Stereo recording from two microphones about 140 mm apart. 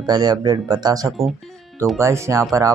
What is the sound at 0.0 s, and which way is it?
Speech, 30° right (ahead or behind).